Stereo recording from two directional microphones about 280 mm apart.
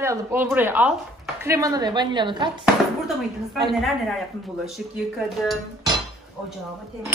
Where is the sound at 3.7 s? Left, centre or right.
Centre.